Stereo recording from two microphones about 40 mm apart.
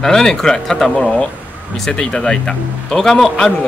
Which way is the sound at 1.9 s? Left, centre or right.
Left.